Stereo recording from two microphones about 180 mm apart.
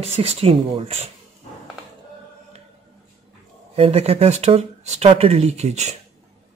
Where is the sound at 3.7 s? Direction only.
30° right (ahead or behind).